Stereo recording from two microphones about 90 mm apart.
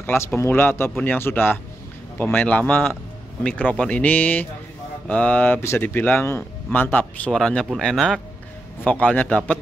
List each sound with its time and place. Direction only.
0.0 s speech: 25° left (ahead or behind)
2.2 s speech: 15° left (ahead or behind)
7.3 s speech: 5° left (ahead or behind)
8.8 s speech: 15° left (ahead or behind)